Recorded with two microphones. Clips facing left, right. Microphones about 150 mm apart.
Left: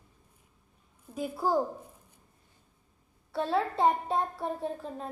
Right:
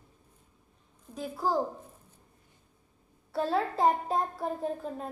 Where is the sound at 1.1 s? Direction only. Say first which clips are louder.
Left 2 dB; 10° left (ahead or behind).